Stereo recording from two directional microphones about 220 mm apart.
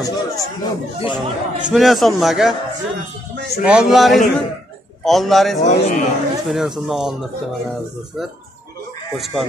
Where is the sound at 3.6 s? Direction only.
5° right (ahead or behind).